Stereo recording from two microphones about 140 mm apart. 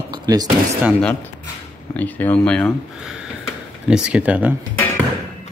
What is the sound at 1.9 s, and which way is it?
Speech, 10° left (ahead or behind).